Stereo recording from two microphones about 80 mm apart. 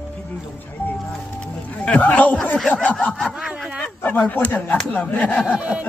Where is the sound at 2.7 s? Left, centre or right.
Centre.